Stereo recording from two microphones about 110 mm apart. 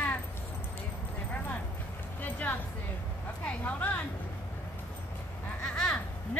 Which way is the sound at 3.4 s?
15° left (ahead or behind).